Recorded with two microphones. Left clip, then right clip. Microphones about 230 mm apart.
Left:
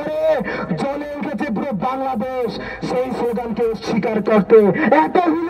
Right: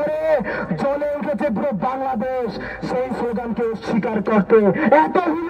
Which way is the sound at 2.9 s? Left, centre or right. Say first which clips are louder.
Left 2 dB; left.